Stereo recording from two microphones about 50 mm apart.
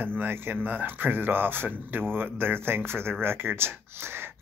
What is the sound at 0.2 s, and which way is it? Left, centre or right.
Speech, right.